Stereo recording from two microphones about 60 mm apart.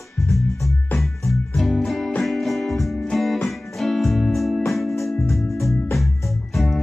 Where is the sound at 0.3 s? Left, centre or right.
Left.